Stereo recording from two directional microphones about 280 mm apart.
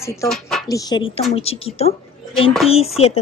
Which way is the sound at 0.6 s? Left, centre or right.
Centre.